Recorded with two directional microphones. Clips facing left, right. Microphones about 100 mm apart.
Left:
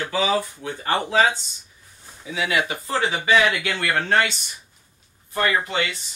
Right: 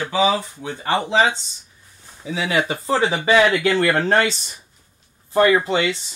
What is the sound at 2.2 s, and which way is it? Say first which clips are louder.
Speech: right 3 dB; 30° right (ahead or behind).